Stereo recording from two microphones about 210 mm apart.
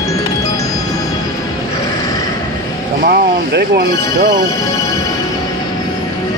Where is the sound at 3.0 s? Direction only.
45° right (ahead or behind).